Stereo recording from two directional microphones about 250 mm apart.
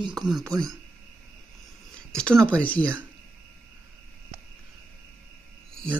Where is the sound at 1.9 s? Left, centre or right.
Centre.